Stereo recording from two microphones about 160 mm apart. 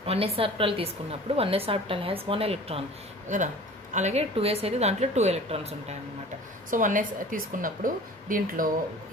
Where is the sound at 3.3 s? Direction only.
50° right (ahead or behind).